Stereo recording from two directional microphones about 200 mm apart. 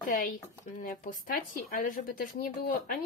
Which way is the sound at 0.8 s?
45° left (ahead or behind).